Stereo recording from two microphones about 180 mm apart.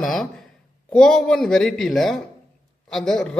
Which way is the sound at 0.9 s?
5° left (ahead or behind).